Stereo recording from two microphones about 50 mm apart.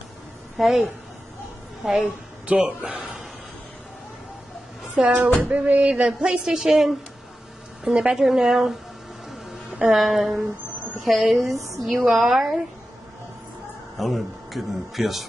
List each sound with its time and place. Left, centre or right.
0.6 s speech: centre
2.0 s speech: right
4.9 s speech: right
5.4 s speech: right; by 7.0 s centre
7.8 s speech: centre
9.9 s a woman's voice: centre
13.9 s speech: centre